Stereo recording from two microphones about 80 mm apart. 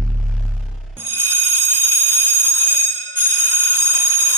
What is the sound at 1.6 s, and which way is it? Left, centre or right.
Bicycle bell, right.